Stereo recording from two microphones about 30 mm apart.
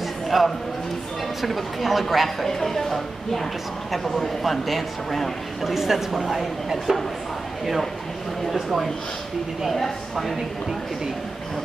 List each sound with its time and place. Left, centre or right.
0.3 s speech: centre
2.4 s speech: centre
6.9 s speech: centre
8.5 s speech: centre